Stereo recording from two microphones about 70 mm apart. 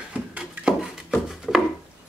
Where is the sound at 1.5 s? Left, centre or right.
Centre.